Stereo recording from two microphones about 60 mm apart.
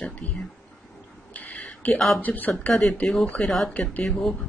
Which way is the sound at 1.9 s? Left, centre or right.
Centre.